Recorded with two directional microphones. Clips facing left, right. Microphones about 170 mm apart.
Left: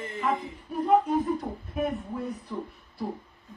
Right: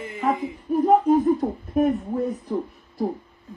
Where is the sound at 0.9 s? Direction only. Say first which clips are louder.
Right 5 dB; 45° right (ahead or behind).